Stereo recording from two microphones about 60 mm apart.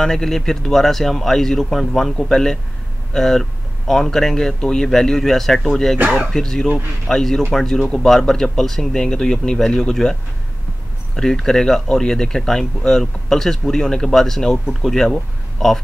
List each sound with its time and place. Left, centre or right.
0.0 s speech: centre
5.9 s speech: right
6.3 s speech: centre
11.1 s speech: centre